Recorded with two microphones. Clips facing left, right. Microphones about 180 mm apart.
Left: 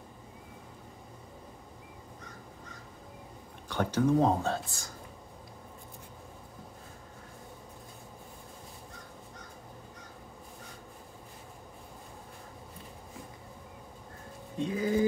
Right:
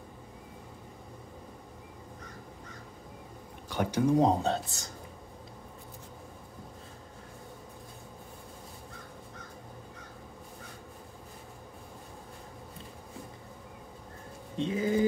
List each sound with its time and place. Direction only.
3.6 s speech: 15° right (ahead or behind)
14.6 s bird: 25° right (ahead or behind)